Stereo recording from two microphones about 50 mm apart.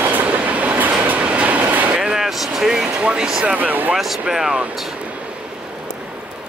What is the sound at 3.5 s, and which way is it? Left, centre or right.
Speech, right.